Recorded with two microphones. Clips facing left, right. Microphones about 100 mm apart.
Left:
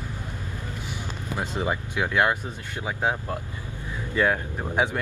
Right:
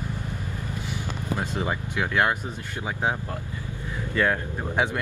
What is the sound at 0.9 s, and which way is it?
Speech, 20° left (ahead or behind).